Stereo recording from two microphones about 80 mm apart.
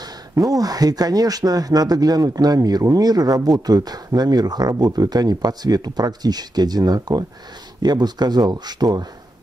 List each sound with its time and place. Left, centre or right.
0.0 s speech: right